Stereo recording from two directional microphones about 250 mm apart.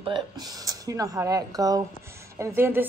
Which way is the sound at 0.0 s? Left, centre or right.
Centre.